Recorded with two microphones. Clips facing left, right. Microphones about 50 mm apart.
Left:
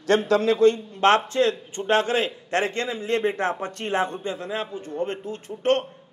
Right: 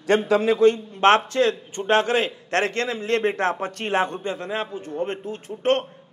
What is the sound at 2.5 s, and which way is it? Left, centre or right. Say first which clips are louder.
Speech: right 2 dB; centre.